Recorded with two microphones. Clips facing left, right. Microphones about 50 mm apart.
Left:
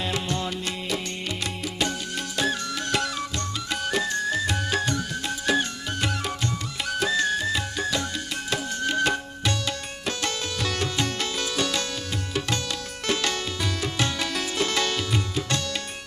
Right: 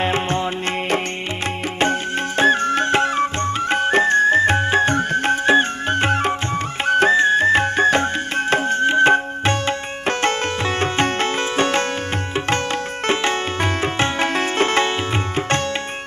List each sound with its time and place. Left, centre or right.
0.0 s music: right
13.0 s music: right